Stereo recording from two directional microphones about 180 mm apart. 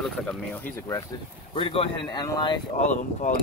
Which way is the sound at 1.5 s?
30° left (ahead or behind).